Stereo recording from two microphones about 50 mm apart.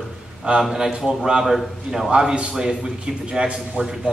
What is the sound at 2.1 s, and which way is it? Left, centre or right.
A man's voice, right.